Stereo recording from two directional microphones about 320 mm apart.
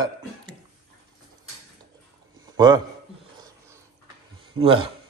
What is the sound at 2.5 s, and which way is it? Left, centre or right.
Speech, centre.